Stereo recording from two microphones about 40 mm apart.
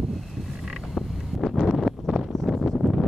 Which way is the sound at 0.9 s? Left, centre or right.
Centre.